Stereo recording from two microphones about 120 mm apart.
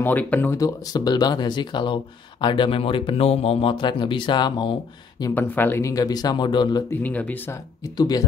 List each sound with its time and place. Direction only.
0.0 s speech: 15° left (ahead or behind)
0.6 s a man's voice: 35° left (ahead or behind)
5.3 s speech: 15° left (ahead or behind); by 6.8 s 40° left (ahead or behind)
6.9 s speech: 15° left (ahead or behind)
7.8 s speech: 30° left (ahead or behind)